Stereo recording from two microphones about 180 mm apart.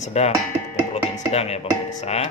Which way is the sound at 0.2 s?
35° left (ahead or behind).